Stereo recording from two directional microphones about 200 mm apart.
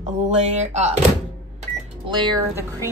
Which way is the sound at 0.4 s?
35° right (ahead or behind).